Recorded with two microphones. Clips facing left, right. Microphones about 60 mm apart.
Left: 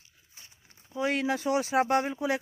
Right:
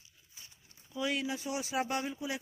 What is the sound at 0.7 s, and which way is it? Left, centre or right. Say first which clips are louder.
Speech: left 5 dB; left.